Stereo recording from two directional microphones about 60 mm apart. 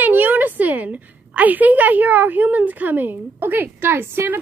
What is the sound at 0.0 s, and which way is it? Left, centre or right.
A woman's voice, right.